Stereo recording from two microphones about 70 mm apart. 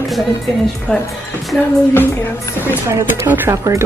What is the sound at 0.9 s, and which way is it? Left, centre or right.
Speech, centre.